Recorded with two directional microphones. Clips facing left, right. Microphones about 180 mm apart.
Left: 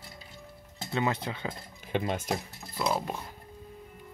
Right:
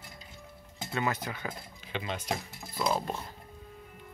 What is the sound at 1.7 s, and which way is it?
Speech, 50° left (ahead or behind).